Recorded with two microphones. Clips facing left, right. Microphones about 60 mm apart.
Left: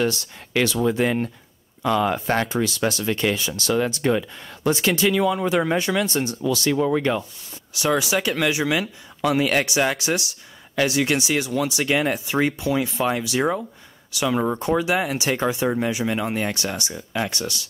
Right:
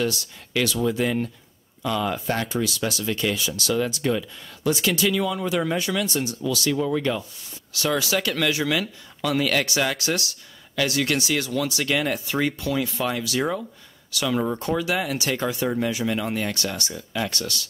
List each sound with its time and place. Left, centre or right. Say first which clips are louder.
0.0 s speech: left 3 dB; left
7.7 s speech: left 2 dB; centre